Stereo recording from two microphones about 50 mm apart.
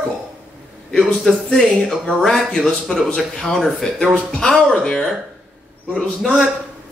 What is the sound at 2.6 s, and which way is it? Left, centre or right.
Speech, centre.